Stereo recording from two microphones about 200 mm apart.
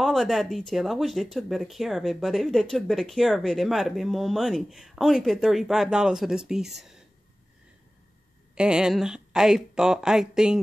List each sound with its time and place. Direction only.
0.0 s speech: centre (ahead or behind)
8.5 s speech: 5° right (ahead or behind)